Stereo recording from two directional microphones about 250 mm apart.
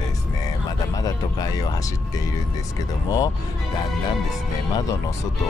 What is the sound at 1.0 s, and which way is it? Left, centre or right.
Speech, centre.